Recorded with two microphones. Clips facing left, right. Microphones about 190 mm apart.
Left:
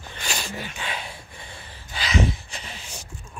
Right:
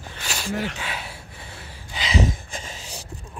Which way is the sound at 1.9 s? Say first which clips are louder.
Right 1 dB; 20° right (ahead or behind).